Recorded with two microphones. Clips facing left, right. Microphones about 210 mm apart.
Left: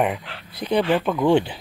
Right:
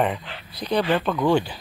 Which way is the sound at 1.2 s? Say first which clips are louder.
Left 3 dB; 25° left (ahead or behind).